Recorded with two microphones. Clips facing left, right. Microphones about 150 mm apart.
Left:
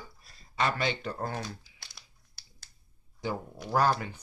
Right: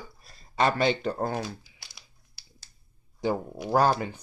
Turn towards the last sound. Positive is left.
turn(degrees=-25)  # may be behind; listen again after turning